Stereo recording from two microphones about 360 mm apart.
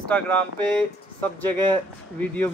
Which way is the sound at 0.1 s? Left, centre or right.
Centre.